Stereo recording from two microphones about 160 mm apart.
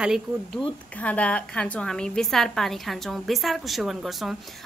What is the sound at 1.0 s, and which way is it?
A woman's voice, 10° left (ahead or behind).